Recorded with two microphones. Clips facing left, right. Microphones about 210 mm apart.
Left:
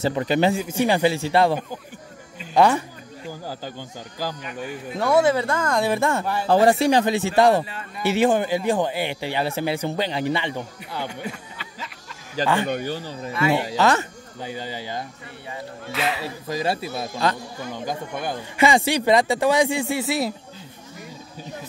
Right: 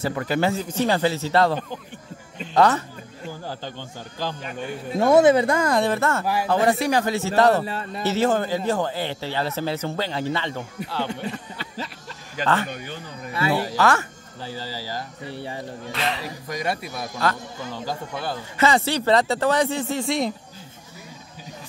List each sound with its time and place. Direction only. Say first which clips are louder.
0.0 s a man's voice: left 3 dB; 20° left (ahead or behind)
4.2 s a man's voice: even; 10° left (ahead or behind)
4.9 s speech: right 4 dB; 20° right (ahead or behind)
5.9 s a man's voice: left 1 dB; 15° left (ahead or behind)
6.4 s speech: left 5 dB; 35° left (ahead or behind); by 7.6 s 15° left (ahead or behind)
7.6 s a man's voice: right 7 dB; 35° right (ahead or behind)
8.0 s a man's voice: left 2 dB; 15° left (ahead or behind)
12.4 s speech: left 3 dB; 35° left (ahead or behind)
13.5 s speech: left 1 dB; 20° left (ahead or behind)
15.2 s a man's voice: right 4 dB; 30° right (ahead or behind)
15.9 s speech: left 2 dB; 5° left (ahead or behind)
16.4 s a man's voice: left 3 dB; 30° left (ahead or behind); by 20.3 s 5° left (ahead or behind)